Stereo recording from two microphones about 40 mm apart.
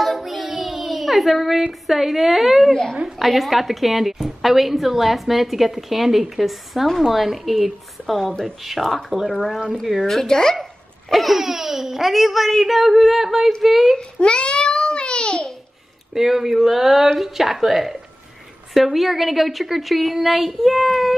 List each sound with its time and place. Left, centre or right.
0.0 s child singing: centre
1.9 s a woman's voice: centre
2.7 s speech: centre
3.2 s a woman's voice: centre
8.3 s speech: centre
8.9 s a woman's voice: centre
10.0 s speech: centre
11.1 s a woman's voice: centre
13.9 s a sound: left
16.2 s a sound: centre
18.7 s a woman's voice: centre